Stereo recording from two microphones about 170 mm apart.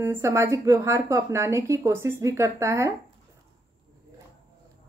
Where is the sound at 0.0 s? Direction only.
15° right (ahead or behind).